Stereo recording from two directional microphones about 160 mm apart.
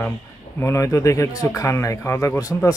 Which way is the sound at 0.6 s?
20° left (ahead or behind).